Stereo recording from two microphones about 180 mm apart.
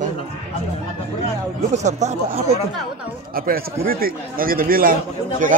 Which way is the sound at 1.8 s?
40° right (ahead or behind).